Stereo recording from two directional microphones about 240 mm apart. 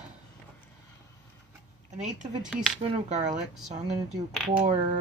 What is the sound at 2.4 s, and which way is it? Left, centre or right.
Speech, centre.